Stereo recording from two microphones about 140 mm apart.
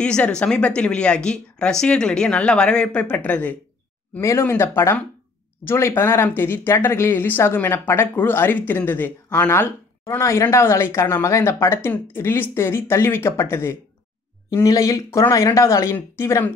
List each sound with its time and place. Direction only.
0.0 s speech: 5° left (ahead or behind)